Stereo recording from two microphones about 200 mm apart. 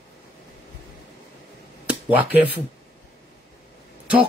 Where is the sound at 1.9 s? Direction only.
10° right (ahead or behind).